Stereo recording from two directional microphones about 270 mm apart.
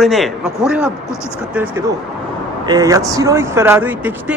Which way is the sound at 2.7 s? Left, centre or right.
Centre.